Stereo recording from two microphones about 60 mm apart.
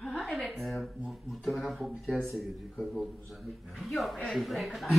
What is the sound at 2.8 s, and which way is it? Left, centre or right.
Speech, centre.